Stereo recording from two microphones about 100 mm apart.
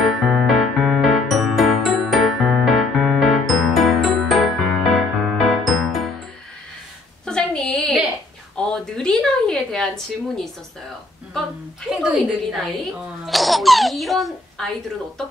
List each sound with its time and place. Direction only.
0.3 s music: centre (ahead or behind)
7.2 s a sound: 5° left (ahead or behind)
11.9 s speech: centre (ahead or behind)